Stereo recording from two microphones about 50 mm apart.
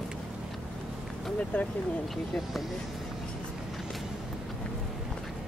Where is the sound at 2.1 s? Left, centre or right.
Centre.